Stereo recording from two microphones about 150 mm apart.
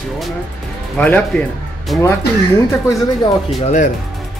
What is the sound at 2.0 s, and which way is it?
Speech, 20° left (ahead or behind).